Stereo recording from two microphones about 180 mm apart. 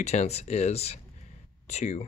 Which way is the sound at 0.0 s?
40° left (ahead or behind).